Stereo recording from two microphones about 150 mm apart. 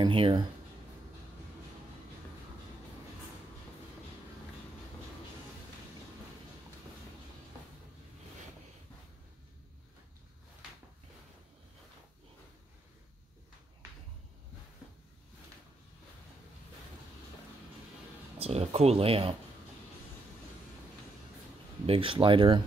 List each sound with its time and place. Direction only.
0.0 s speech: 35° right (ahead or behind)
18.4 s speech: 45° right (ahead or behind)
21.8 s speech: 35° right (ahead or behind)